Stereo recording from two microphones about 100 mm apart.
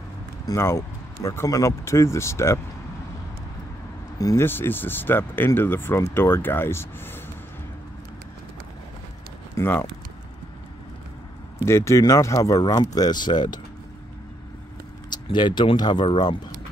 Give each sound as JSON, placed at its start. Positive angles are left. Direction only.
{"t": 0.6, "sound": "speech", "side_deg": 30}
{"t": 4.2, "sound": "speech", "side_deg": 35}
{"t": 4.5, "sound": "speech", "side_deg": 20}
{"t": 9.6, "sound": "speech", "side_deg": 25}
{"t": 11.6, "sound": "speech", "side_deg": 30}
{"t": 15.2, "sound": "speech", "side_deg": 50}